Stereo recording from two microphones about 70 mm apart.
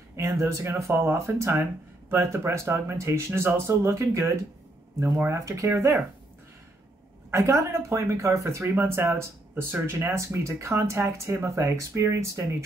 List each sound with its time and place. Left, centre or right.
0.1 s speech: right
7.2 s speech: right